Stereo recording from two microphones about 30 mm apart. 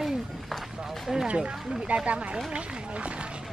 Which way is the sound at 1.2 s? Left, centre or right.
Right.